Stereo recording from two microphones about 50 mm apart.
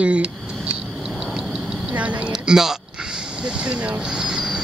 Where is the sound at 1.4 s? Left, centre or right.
Centre.